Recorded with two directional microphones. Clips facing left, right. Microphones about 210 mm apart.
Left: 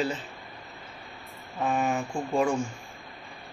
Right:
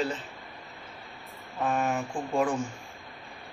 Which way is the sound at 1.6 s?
Centre (ahead or behind).